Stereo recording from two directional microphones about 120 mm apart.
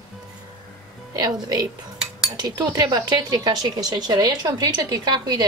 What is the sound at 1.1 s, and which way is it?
Speech, 35° right (ahead or behind).